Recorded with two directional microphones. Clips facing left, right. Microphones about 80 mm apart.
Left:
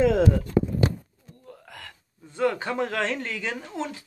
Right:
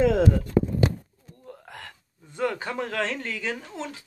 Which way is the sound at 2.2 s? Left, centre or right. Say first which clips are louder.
Left 3 dB; centre.